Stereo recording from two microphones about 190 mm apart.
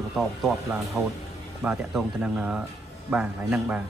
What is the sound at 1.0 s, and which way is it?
A man's voice, 10° right (ahead or behind).